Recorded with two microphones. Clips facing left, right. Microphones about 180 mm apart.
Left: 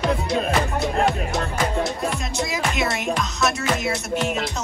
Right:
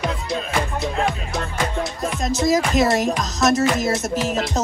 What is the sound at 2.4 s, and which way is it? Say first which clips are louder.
Music: right 7 dB; 40° right (ahead or behind).